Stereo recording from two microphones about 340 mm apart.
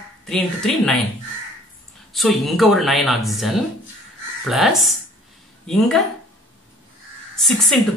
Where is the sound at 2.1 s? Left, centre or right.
Centre.